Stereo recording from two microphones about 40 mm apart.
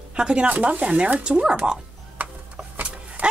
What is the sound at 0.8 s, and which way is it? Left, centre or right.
Speech, right.